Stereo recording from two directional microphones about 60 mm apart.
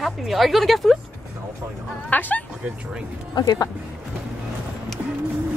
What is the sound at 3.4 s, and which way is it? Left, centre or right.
Speech, left.